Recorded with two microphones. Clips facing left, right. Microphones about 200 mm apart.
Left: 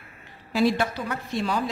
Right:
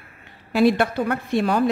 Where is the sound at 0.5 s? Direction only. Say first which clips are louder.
Right 5 dB; 60° right (ahead or behind).